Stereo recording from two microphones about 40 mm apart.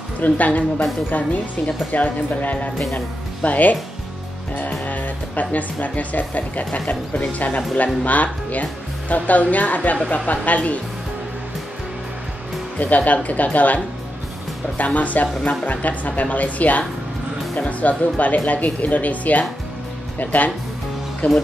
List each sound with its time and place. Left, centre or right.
0.2 s speech: left
1.9 s speech: left
12.7 s speech: left
15.0 s speech: left